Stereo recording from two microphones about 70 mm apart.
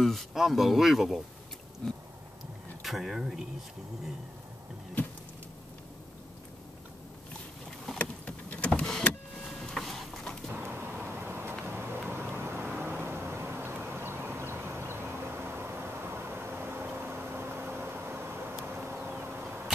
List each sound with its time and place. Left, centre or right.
0.0 s speech: centre
2.8 s speech: centre
8.0 s power windows: centre
9.7 s printer: centre
10.5 s vehicle: right